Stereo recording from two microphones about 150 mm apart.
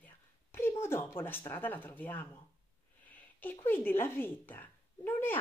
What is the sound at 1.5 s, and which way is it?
Speech, 15° left (ahead or behind).